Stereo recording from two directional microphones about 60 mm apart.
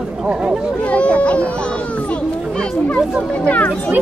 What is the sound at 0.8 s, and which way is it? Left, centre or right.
Speech, left.